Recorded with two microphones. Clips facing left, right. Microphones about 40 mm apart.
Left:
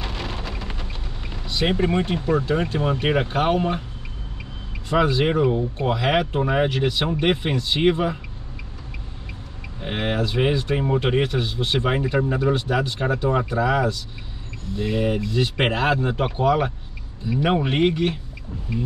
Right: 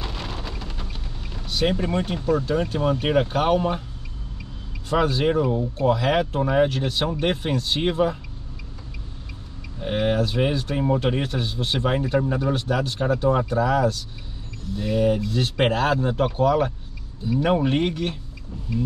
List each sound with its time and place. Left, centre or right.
0.1 s a sound: centre
1.7 s speech: left
4.9 s speech: left
9.8 s speech: left
11.4 s speech: centre
11.8 s speech: left